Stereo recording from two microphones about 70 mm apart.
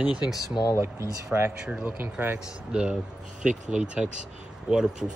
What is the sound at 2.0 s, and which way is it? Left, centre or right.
Speech, right.